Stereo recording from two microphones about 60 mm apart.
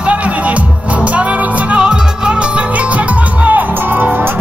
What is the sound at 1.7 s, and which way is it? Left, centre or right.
Music, centre.